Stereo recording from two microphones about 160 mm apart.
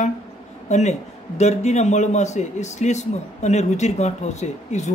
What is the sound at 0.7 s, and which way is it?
A man's voice, 45° left (ahead or behind).